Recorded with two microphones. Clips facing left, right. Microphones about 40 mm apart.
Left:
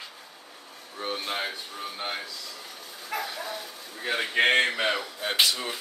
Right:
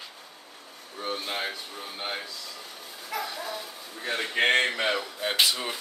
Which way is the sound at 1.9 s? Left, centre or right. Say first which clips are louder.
Even; centre.